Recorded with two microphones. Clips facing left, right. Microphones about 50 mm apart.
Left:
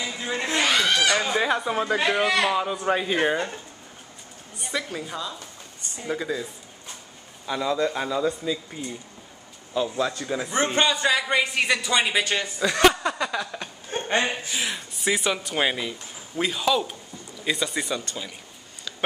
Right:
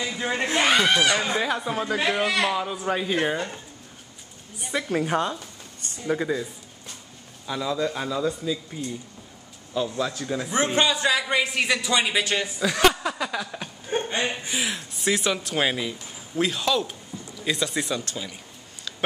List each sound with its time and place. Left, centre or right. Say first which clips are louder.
0.2 s a sound: right 2 dB; right
1.1 s speech: left 2 dB; centre
5.0 s speech: right 8 dB; right
6.3 s speech: right 2 dB; right
7.4 s a man's voice: left 2 dB; centre
13.9 s chuckle: right 4 dB; centre
14.5 s a man's voice: right 1 dB; centre
18.9 s a sound: even; centre